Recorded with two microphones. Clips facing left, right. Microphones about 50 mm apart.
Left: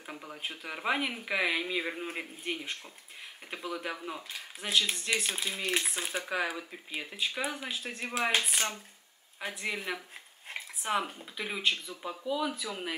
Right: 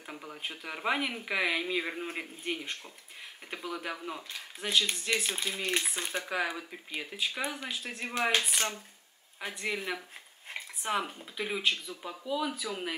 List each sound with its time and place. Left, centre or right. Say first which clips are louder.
0.0 s speech: even; centre